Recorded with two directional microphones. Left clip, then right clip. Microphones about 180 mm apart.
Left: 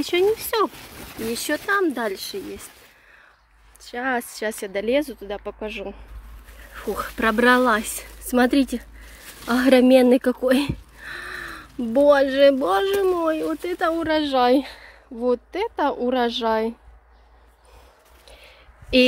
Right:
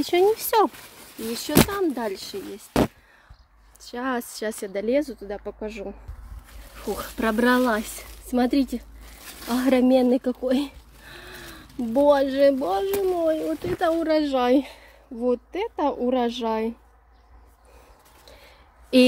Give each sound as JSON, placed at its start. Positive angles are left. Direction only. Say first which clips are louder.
{"t": 0.0, "sound": "speech", "louder": "even", "side_deg": -15}
{"t": 0.4, "sound": "speech", "louder": "right 2 dB", "side_deg": -30}
{"t": 1.3, "sound": "speech", "louder": "even", "side_deg": 0}
{"t": 3.8, "sound": "speech", "louder": "left 3 dB", "side_deg": -20}
{"t": 12.7, "sound": "speech", "louder": "left 3 dB", "side_deg": 10}
{"t": 13.7, "sound": "speech", "louder": "even", "side_deg": -5}
{"t": 18.2, "sound": "a sound", "louder": "left 3 dB", "side_deg": -30}